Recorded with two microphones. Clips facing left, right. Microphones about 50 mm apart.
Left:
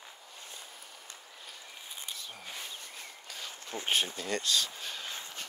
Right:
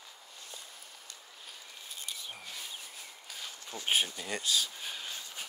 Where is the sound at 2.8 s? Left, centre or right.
Centre.